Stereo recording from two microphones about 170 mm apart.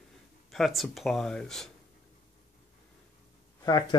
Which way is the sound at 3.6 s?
25° left (ahead or behind).